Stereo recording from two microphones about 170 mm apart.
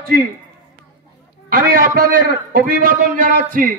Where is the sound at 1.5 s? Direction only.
55° right (ahead or behind).